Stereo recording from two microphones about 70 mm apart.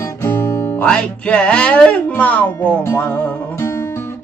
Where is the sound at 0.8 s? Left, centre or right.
Centre.